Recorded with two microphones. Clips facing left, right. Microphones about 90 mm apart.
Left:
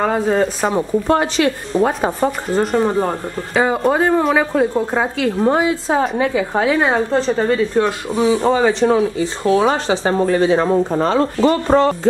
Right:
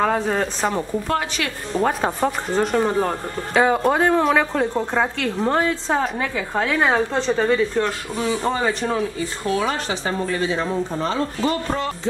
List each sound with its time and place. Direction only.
0.0 s speech: centre (ahead or behind)
1.0 s speech: 25° left (ahead or behind)
1.7 s speech: centre (ahead or behind); by 9.7 s 25° left (ahead or behind)
9.7 s speech: 40° left (ahead or behind)